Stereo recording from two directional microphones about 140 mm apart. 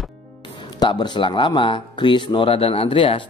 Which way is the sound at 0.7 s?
35° left (ahead or behind).